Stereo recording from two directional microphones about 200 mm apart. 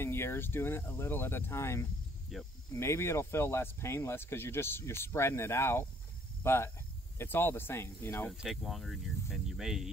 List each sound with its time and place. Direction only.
0.0 s speech: 10° left (ahead or behind)
2.3 s speech: centre (ahead or behind)
2.7 s speech: 15° left (ahead or behind)
8.3 s speech: centre (ahead or behind)